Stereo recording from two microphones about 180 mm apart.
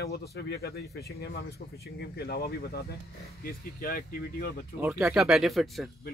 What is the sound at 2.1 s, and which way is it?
Speech, 60° left (ahead or behind).